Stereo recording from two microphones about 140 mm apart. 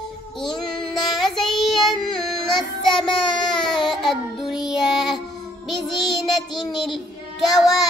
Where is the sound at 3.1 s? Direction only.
35° left (ahead or behind).